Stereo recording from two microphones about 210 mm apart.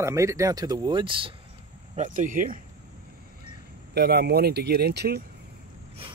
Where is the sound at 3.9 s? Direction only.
50° right (ahead or behind).